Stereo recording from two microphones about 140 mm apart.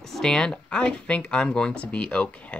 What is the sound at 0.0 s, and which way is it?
Speech, 5° left (ahead or behind).